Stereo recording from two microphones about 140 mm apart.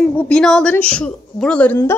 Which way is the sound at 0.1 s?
10° left (ahead or behind).